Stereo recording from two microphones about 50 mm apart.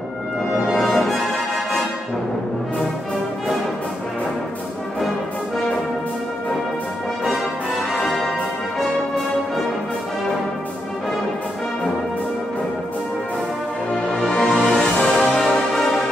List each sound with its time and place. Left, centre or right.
0.5 s music: centre
7.9 s music: centre
14.2 s music: centre
14.5 s music: centre
14.8 s music: centre